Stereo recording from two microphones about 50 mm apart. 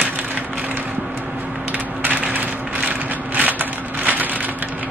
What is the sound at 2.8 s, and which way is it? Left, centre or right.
Crushing, right.